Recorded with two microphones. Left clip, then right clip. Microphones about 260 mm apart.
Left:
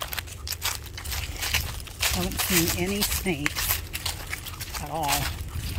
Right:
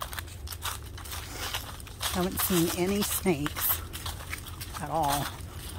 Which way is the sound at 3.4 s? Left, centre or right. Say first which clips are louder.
Left 6 dB; left.